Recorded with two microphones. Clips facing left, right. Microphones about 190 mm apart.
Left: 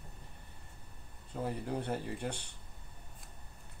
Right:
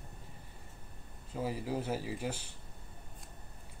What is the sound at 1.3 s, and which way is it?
Speech, 5° right (ahead or behind).